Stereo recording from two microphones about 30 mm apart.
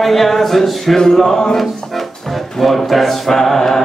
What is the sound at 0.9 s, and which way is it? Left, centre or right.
A capella, centre.